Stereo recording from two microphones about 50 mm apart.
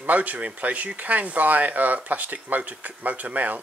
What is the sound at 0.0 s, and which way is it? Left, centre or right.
Speech, right.